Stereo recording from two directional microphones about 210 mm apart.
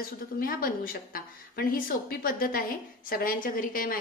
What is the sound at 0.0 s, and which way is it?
A woman's voice, 45° left (ahead or behind).